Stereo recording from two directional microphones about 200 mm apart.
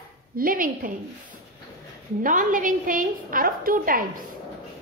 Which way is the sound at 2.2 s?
40° right (ahead or behind).